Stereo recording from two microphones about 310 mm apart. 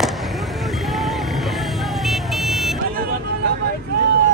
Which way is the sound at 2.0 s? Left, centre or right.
Centre.